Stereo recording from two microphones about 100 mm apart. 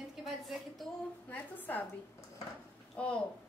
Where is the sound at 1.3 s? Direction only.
20° left (ahead or behind).